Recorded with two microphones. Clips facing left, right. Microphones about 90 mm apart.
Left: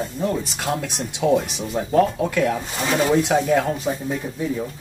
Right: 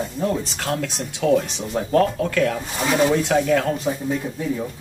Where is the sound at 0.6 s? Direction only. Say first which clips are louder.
Even; 15° left (ahead or behind).